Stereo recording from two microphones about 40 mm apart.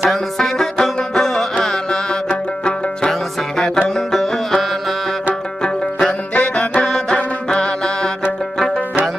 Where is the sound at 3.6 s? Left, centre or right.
Centre.